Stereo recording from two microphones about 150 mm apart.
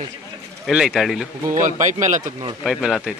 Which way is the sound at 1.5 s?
55° right (ahead or behind).